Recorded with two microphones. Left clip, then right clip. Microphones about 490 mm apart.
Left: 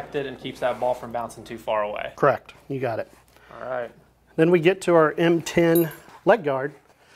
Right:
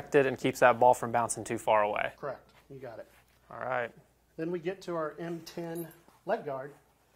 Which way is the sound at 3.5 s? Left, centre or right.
Right.